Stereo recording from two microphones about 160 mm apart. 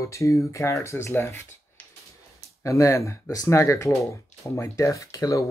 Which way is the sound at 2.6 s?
20° left (ahead or behind).